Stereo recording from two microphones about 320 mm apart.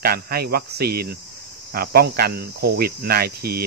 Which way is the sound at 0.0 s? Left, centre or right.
Right.